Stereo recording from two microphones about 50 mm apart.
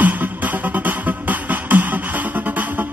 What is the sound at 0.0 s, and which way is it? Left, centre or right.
Music, right.